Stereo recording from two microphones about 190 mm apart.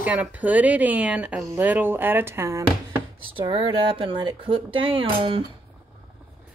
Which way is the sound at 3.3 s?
25° right (ahead or behind).